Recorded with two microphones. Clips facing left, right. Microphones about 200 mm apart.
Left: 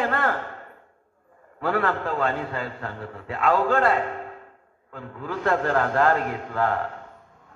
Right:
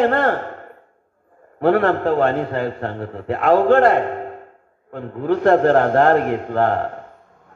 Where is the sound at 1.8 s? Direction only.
50° right (ahead or behind).